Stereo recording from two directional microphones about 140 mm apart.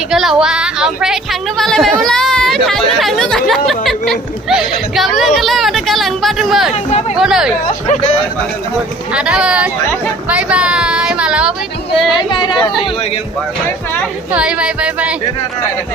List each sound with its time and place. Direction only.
0.1 s a woman's voice: 5° right (ahead or behind)
6.7 s speech: 50° left (ahead or behind)
7.2 s a woman's voice: 5° right (ahead or behind)
7.8 s speech: 55° left (ahead or behind)
9.1 s speech: 5° right (ahead or behind)
12.1 s speech: 35° left (ahead or behind)
14.3 s speech: 10° right (ahead or behind)